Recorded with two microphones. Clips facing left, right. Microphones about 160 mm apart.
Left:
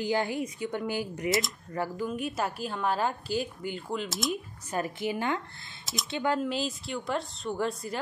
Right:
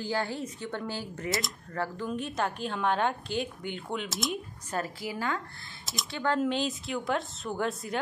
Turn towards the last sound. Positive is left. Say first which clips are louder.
# left 1 dB
turn(degrees=0)  # may be behind; listen again after turning